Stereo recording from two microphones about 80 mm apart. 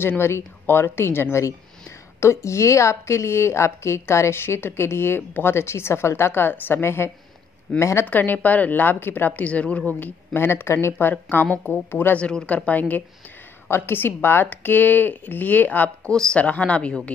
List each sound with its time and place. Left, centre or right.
0.7 s speech: left
8.1 s speech: left
12.2 s speech: centre
13.7 s speech: left
16.1 s speech: centre